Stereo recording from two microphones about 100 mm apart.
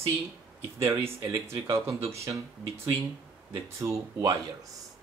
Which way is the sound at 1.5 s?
30° right (ahead or behind).